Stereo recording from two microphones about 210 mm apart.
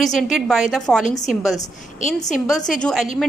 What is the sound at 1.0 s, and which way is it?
A woman's voice, 35° left (ahead or behind).